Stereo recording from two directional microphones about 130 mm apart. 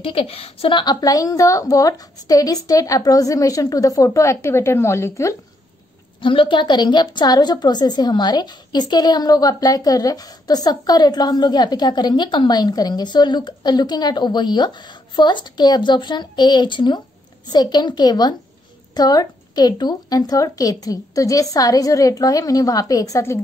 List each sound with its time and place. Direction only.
0.0 s a woman's voice: 45° left (ahead or behind); by 5.3 s 20° left (ahead or behind)
6.2 s a woman's voice: 40° left (ahead or behind); by 23.4 s 20° left (ahead or behind)